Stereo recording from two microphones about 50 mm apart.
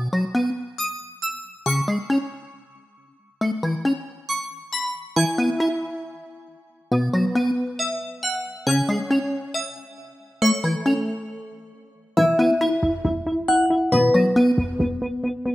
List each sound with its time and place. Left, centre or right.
0.0 s music: centre
3.3 s music: centre
6.9 s music: centre
9.2 s music: centre
10.4 s music: centre
12.2 s music: centre